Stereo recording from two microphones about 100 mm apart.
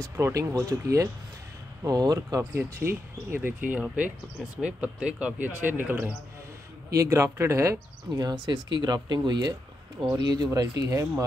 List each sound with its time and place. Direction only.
0.0 s speech: 35° right (ahead or behind)
2.8 s speech: 15° right (ahead or behind)
6.9 s speech: 30° right (ahead or behind)
8.2 s speech: 45° right (ahead or behind)